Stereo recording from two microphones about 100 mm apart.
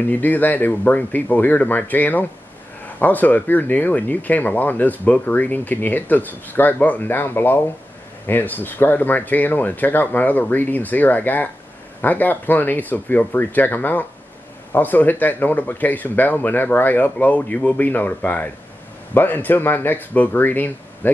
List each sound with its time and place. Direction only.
0.0 s speech: 15° left (ahead or behind)